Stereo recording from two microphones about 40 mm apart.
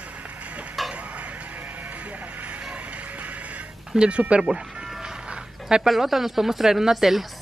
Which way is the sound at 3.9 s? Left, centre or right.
Right.